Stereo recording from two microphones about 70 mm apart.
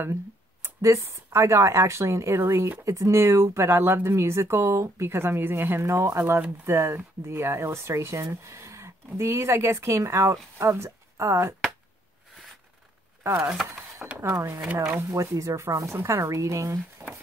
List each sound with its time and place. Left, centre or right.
0.0 s speech: right
13.2 s speech: right
14.0 s a sound: centre
14.8 s speech: right
15.0 s speech: right
17.0 s a sound: right